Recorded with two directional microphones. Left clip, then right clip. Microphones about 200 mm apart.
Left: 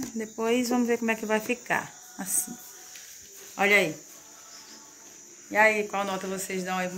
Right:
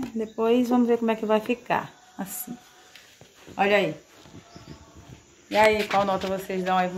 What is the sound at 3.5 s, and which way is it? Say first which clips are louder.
Speech: right 1 dB; 25° right (ahead or behind).